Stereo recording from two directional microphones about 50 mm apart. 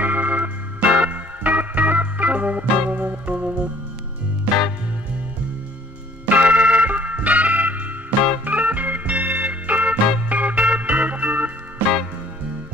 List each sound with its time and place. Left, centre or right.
0.0 s organ: right
6.2 s music: right